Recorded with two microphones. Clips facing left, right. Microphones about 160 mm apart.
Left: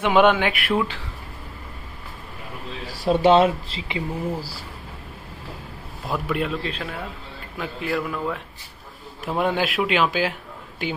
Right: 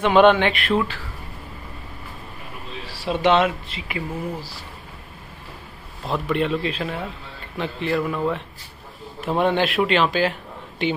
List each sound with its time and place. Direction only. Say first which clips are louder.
0.0 s a sound: right 2 dB; 10° left (ahead or behind)
3.2 s speech: left 2 dB; 30° left (ahead or behind)
6.1 s a man's voice: right 3 dB; 5° left (ahead or behind)